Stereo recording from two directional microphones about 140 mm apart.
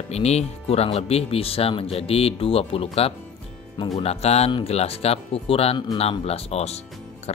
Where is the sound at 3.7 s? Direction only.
35° left (ahead or behind).